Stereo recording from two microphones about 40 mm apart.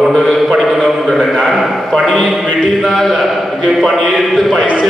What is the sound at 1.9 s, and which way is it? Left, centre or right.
Speech, centre.